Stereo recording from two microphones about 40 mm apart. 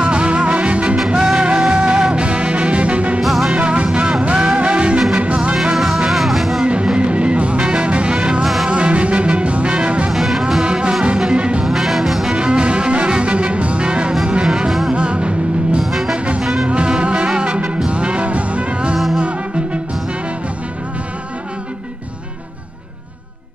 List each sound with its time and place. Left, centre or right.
0.0 s music: right
0.9 s music: centre; by 3.2 s right
3.2 s music: centre
3.5 s music: right
6.0 s music: centre
6.6 s music: right
10.1 s music: centre
10.6 s music: centre
11.6 s music: centre
12.4 s music: right
15.8 s music: centre
16.6 s music: right